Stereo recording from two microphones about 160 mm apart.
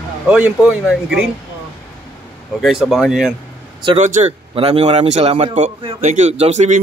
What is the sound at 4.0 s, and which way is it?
A man's voice, 45° right (ahead or behind).